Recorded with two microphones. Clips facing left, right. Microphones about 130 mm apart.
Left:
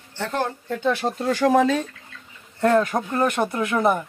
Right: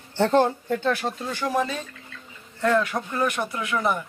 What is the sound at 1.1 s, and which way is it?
Speech, 80° left.